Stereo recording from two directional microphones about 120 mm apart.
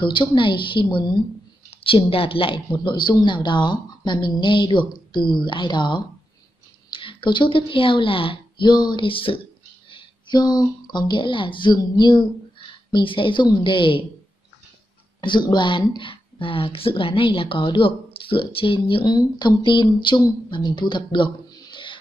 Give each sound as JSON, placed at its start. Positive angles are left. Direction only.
{"t": 0.0, "sound": "speech", "side_deg": 40}
{"t": 1.7, "sound": "a woman's voice", "side_deg": 50}
{"t": 15.1, "sound": "speech", "side_deg": 40}